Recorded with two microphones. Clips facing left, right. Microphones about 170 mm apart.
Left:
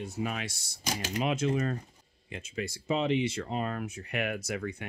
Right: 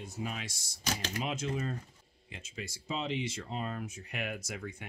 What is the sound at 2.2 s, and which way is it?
Speech, 55° left (ahead or behind).